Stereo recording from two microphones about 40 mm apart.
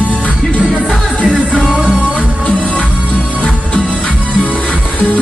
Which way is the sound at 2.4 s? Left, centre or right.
Left.